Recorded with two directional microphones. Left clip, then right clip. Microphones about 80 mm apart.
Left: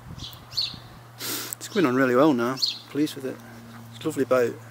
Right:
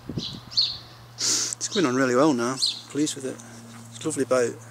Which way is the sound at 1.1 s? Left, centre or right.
Centre.